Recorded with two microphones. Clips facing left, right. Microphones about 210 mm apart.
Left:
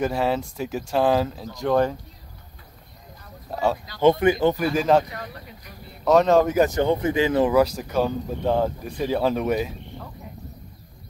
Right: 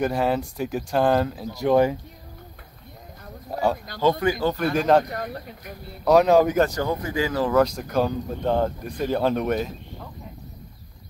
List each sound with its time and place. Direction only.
0.0 s speech: centre (ahead or behind)
4.0 s speech: 20° left (ahead or behind)
4.7 s speech: centre (ahead or behind)
5.1 s speech: 50° right (ahead or behind)
6.0 s speech: 5° right (ahead or behind)
6.7 s speech: 25° left (ahead or behind)
7.5 s speech: 5° left (ahead or behind)